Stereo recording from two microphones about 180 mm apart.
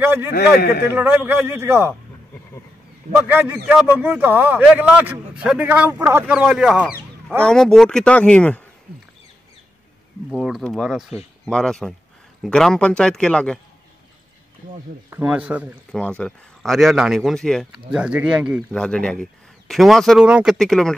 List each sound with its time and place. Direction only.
0.0 s a man's voice: 10° right (ahead or behind)
0.3 s a man's voice: 60° left (ahead or behind)
0.8 s a man's voice: 10° right (ahead or behind)
3.2 s a man's voice: 10° right (ahead or behind); by 8.6 s 5° left (ahead or behind)
10.3 s a man's voice: centre (ahead or behind)
15.0 s a man's voice: 10° right (ahead or behind)
15.9 s a man's voice: 5° left (ahead or behind)
18.7 s a man's voice: 5° left (ahead or behind)